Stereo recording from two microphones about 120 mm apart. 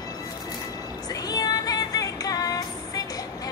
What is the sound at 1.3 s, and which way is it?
Music, 30° left (ahead or behind).